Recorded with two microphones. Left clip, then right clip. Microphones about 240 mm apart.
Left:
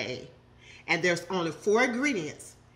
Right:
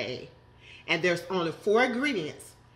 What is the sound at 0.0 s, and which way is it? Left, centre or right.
A woman's voice, centre.